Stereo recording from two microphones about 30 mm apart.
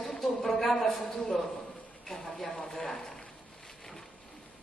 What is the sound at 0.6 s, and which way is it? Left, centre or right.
A man's voice, centre.